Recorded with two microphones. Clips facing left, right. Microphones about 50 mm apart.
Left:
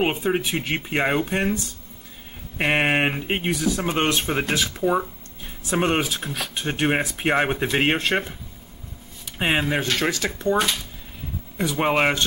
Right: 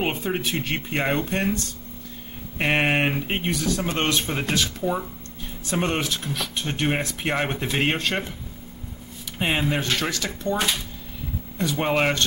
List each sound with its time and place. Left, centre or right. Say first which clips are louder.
0.2 s speech: left 3 dB; centre
7.9 s speech: left 3 dB; left
9.4 s speech: left 2 dB; centre
11.5 s speech: left 2 dB; centre